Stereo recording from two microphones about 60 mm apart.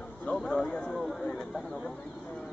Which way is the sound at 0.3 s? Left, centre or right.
Centre.